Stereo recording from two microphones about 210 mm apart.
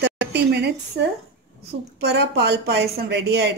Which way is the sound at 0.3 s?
55° right (ahead or behind).